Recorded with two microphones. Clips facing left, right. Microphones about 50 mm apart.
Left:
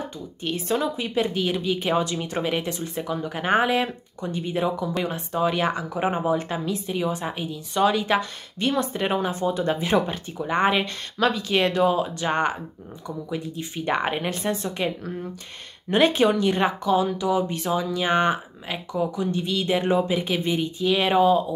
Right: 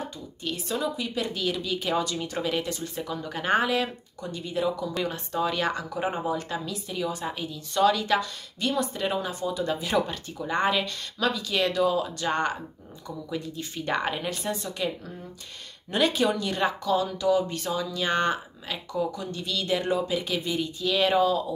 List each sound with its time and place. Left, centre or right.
0.4 s speech: left
5.0 s speech: left
14.1 s speech: left